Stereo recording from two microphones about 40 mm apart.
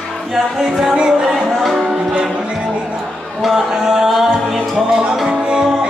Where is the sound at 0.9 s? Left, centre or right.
Right.